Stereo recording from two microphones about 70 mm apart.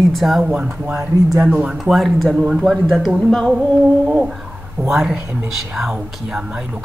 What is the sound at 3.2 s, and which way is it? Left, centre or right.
Music, centre.